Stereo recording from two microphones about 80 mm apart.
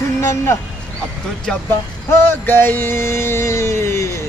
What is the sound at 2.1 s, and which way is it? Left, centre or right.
Speech, left.